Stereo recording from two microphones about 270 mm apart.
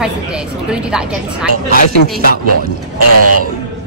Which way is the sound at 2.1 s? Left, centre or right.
Right.